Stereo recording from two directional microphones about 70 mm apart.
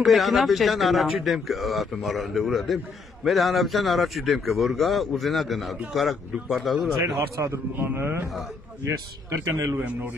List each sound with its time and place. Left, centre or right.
0.0 s speech: centre
7.2 s a man's voice: right
7.8 s a man's voice: right